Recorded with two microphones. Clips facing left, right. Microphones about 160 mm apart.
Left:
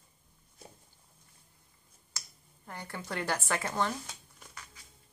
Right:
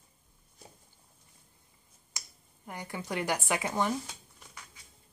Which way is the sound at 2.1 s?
15° right (ahead or behind).